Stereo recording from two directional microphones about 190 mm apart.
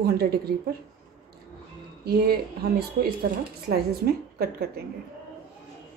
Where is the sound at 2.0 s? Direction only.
55° right (ahead or behind).